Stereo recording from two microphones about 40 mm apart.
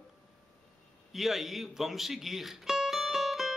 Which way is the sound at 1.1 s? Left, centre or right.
Centre.